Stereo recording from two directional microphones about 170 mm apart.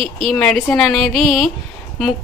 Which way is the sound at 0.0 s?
5° left (ahead or behind).